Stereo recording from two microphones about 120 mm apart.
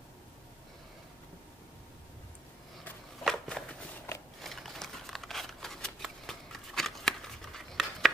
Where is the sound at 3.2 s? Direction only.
5° left (ahead or behind).